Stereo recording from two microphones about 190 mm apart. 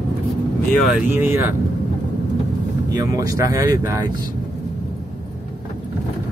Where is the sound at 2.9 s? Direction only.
15° right (ahead or behind).